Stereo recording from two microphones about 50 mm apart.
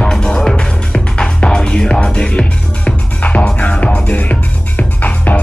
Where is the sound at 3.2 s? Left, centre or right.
Left.